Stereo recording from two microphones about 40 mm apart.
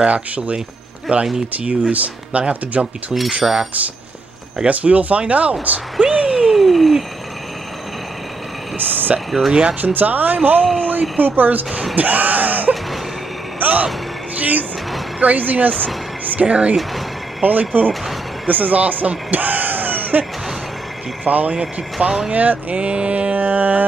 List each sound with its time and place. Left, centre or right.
0.0 s speech: right
3.4 s speech: centre
4.6 s speech: right
5.9 s a sound: right
6.5 s a sound: centre
8.7 s speech: right
11.9 s a sound: right
14.4 s speech: right
16.3 s speech: right
17.4 s speech: right